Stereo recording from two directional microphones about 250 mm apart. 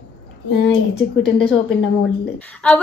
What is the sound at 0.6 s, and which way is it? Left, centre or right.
Speech, left.